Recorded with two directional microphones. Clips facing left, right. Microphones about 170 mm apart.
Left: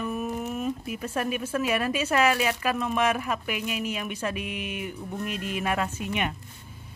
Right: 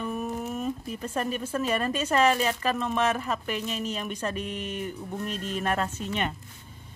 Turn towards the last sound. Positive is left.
turn(degrees=10)  # may be behind; listen again after turning